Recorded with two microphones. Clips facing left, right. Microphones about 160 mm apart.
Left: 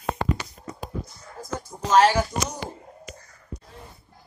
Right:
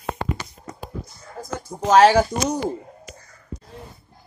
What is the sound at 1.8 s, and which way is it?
Speech, 90° right.